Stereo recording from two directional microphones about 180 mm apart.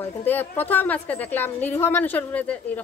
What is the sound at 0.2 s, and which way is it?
A woman's voice, 10° left (ahead or behind).